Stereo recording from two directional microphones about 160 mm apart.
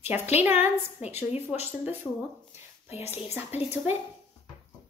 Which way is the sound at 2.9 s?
40° left (ahead or behind).